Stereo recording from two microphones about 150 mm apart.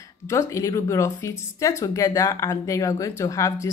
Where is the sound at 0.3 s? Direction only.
20° left (ahead or behind).